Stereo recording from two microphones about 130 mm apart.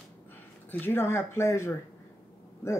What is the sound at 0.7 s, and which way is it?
Speech, 15° left (ahead or behind).